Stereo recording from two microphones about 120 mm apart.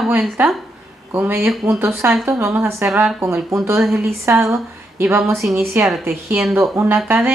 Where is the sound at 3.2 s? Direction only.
20° right (ahead or behind).